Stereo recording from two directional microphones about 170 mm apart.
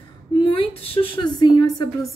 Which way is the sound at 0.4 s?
30° left (ahead or behind).